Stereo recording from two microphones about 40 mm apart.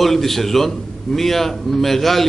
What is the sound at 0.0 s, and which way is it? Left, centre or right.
A man's voice, centre.